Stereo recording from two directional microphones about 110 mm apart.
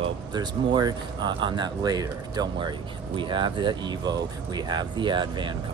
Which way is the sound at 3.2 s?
45° right (ahead or behind).